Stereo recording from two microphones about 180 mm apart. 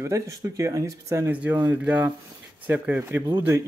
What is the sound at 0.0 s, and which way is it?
Speech, 15° right (ahead or behind).